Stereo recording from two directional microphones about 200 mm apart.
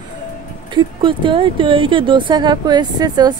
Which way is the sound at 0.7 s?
25° right (ahead or behind).